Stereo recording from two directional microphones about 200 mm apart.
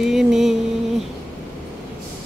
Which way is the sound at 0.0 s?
Centre (ahead or behind).